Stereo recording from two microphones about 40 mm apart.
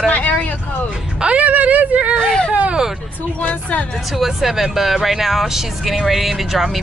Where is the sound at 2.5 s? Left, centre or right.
Right.